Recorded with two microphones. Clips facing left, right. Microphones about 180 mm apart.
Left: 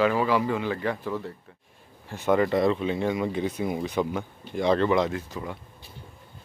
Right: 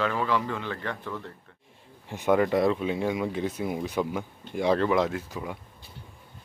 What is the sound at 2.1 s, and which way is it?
Speech, 15° right (ahead or behind).